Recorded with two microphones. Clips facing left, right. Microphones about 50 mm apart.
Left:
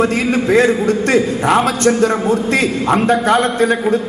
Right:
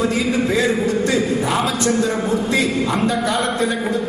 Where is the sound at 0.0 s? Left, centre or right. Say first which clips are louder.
Left 4 dB; left.